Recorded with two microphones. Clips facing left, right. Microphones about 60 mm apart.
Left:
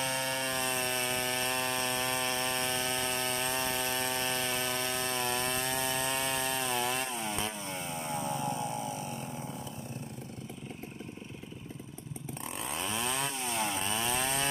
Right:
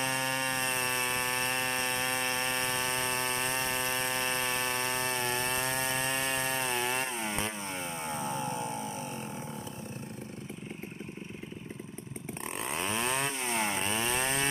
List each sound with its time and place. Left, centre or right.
0.0 s chainsaw: right
0.6 s a sound: right
12.6 s chainsaw: right